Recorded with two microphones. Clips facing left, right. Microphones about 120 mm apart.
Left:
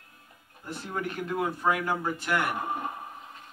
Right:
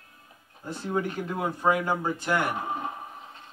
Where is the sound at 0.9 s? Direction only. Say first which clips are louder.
Right 1 dB; 20° right (ahead or behind).